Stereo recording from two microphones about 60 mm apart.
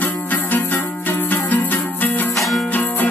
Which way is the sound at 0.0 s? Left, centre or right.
Left.